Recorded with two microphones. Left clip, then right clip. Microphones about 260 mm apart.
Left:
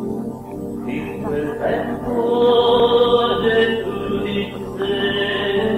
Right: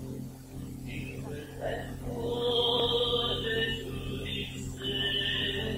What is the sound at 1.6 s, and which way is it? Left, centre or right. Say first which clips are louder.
Music: left 11 dB; left.